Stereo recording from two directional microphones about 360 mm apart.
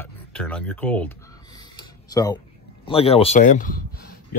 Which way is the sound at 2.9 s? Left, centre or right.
Centre.